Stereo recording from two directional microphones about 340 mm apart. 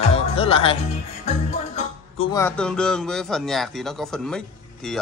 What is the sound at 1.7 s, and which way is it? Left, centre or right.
Speech, centre.